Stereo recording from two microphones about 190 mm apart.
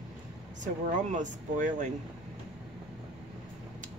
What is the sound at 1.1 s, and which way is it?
Speech, 40° right (ahead or behind).